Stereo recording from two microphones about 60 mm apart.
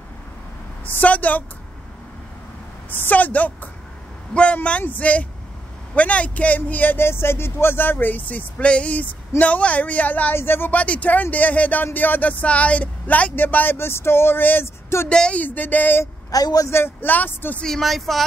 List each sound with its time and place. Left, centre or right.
0.8 s speech: left
2.9 s a woman's voice: left
10.8 s speech: left
15.0 s a woman's voice: centre
15.4 s speech: left
16.3 s a woman's voice: left
16.6 s speech: left
17.6 s speech: centre